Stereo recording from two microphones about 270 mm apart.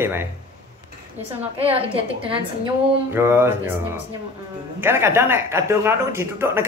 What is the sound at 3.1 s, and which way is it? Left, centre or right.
Speech, centre.